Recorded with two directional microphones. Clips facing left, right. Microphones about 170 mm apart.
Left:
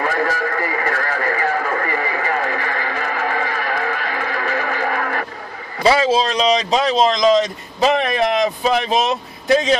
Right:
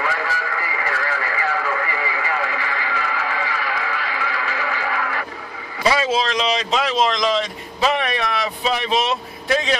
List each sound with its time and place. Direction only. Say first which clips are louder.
0.0 s radio: left 5 dB; 45° left (ahead or behind)
5.8 s speech: left 4 dB; 30° left (ahead or behind)
9.5 s a man's voice: left 5 dB; 25° left (ahead or behind)